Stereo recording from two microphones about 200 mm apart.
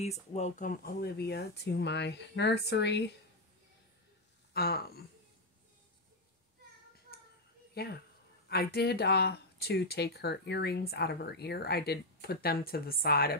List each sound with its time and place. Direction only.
0.0 s speech: 35° left (ahead or behind); by 3.1 s 55° left (ahead or behind)
4.6 s speech: 50° left (ahead or behind)
7.7 s speech: 50° left (ahead or behind)